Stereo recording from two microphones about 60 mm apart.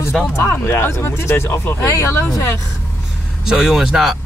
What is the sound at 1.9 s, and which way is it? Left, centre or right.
Speech, left.